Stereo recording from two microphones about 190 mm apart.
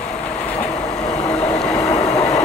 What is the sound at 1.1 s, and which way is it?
Vehicle, 5° left (ahead or behind).